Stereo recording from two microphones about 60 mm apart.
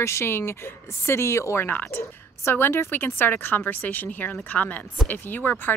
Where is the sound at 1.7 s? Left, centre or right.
Left.